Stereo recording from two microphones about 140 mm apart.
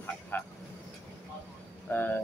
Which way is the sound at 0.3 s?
15° left (ahead or behind).